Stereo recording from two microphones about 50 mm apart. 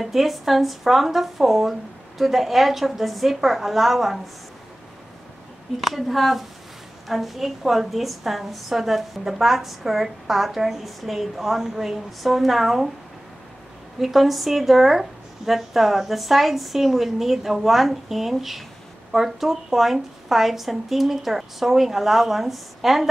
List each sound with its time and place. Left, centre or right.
0.0 s a woman's voice: centre
5.8 s a woman's voice: centre
13.9 s a woman's voice: centre